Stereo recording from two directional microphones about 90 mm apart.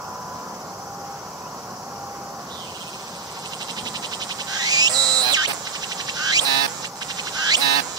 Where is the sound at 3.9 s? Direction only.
50° right (ahead or behind).